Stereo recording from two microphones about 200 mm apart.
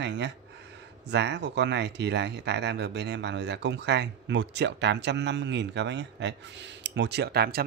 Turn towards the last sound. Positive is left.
turn(degrees=-50)  # may be behind; listen again after turning